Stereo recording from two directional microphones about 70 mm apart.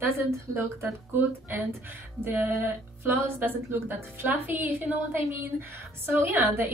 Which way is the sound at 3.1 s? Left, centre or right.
Right.